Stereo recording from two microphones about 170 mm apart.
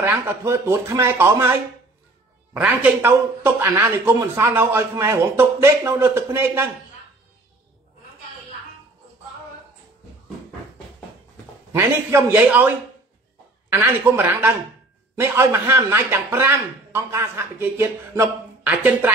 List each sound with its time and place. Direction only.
0.0 s speech: 15° right (ahead or behind)
11.7 s speech: 15° right (ahead or behind)